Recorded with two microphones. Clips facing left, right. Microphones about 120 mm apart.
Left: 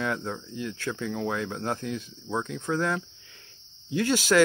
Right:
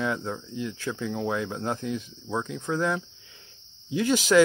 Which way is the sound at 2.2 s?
Centre (ahead or behind).